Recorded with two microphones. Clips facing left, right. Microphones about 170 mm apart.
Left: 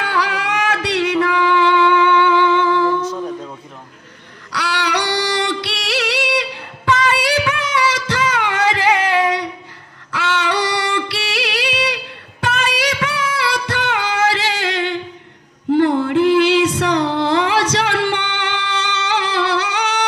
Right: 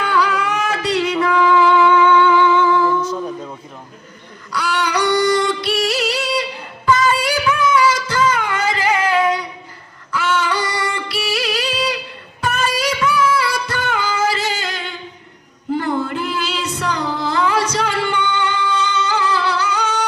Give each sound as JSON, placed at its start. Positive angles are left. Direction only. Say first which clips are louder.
{"t": 0.0, "sound": "music", "louder": "right 2 dB", "side_deg": 75}
{"t": 4.5, "sound": "singing", "louder": "right 1 dB", "side_deg": 80}
{"t": 10.1, "sound": "music", "louder": "even", "side_deg": 80}